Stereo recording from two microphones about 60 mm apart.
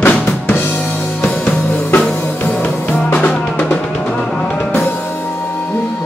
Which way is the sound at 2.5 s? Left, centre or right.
Left.